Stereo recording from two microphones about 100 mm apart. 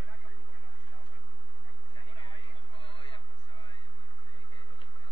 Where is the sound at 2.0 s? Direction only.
55° left (ahead or behind).